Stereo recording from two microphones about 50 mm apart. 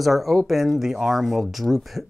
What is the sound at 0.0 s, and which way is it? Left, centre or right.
Speech, centre.